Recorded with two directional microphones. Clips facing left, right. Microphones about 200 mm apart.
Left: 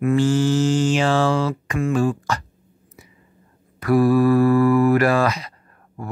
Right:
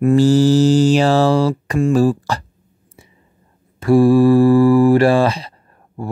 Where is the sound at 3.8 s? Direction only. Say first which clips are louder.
Right 5 dB; 30° right (ahead or behind).